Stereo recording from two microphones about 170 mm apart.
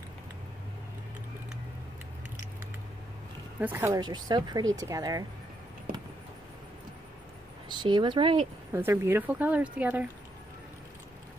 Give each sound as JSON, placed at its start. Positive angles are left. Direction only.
{"t": 3.5, "sound": "speech", "side_deg": -15}
{"t": 7.6, "sound": "speech", "side_deg": -25}
{"t": 8.7, "sound": "speech", "side_deg": -15}